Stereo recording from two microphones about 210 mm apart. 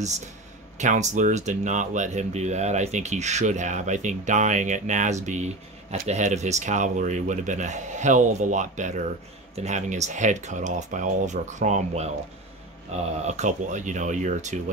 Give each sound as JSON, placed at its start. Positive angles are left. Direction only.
{"t": 0.7, "sound": "speech", "side_deg": -35}
{"t": 13.2, "sound": "speech", "side_deg": -35}